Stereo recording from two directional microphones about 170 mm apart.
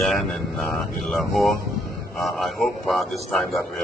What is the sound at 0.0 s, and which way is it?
A man's voice, centre (ahead or behind).